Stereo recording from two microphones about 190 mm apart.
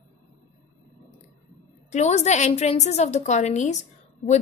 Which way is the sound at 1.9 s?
35° left (ahead or behind).